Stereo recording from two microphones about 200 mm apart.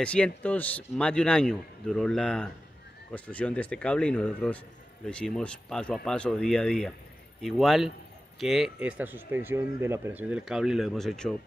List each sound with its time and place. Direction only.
0.0 s speech: 5° left (ahead or behind)